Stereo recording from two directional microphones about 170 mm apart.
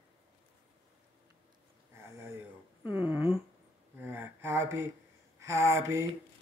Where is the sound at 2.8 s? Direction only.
10° right (ahead or behind).